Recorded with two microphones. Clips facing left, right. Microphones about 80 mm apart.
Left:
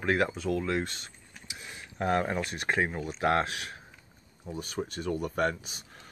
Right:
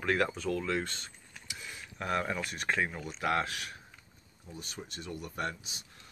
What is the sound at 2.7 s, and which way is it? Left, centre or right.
Speech, left.